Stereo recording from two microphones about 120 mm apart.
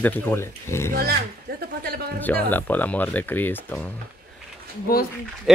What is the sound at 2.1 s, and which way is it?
Speech, 15° left (ahead or behind).